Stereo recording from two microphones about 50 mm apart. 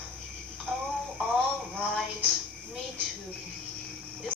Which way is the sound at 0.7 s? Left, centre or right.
Right.